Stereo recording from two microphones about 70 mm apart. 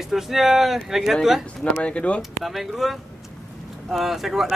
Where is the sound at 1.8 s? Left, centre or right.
Centre.